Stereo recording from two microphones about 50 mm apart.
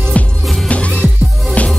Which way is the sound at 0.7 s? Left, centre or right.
Left.